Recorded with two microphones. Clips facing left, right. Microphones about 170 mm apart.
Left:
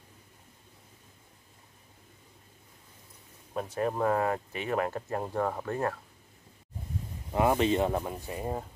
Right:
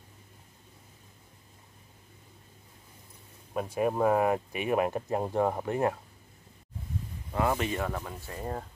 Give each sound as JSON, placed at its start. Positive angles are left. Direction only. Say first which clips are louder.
{"t": 3.5, "sound": "speech", "louder": "right 2 dB", "side_deg": -10}
{"t": 7.3, "sound": "speech", "louder": "left 4 dB", "side_deg": 20}